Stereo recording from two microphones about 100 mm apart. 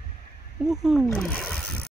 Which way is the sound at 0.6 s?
5° right (ahead or behind).